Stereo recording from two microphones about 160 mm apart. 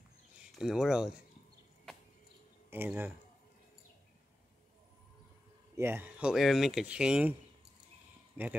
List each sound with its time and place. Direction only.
0.6 s speech: centre (ahead or behind)
2.7 s speech: 15° right (ahead or behind)
5.8 s speech: 15° right (ahead or behind)
8.4 s speech: 10° right (ahead or behind)